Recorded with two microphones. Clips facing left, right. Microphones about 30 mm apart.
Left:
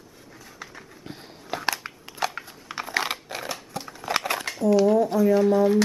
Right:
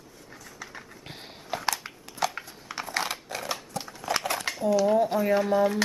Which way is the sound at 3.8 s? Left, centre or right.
Centre.